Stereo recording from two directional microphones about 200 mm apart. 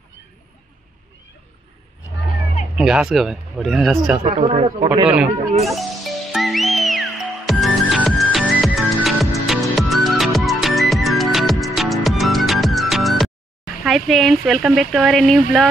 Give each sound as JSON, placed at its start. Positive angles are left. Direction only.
{"t": 2.7, "sound": "speech", "side_deg": -5}
{"t": 4.4, "sound": "a man's voice", "side_deg": -30}
{"t": 5.0, "sound": "speech", "side_deg": -5}
{"t": 5.6, "sound": "music", "side_deg": 0}
{"t": 13.8, "sound": "speech", "side_deg": 0}